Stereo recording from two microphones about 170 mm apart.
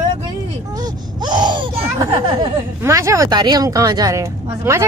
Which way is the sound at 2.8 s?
15° right (ahead or behind).